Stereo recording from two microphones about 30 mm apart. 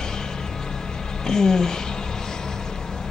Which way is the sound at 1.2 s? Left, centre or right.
Left.